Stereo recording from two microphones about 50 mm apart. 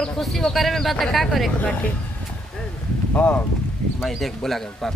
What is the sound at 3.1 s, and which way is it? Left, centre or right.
Speech, left.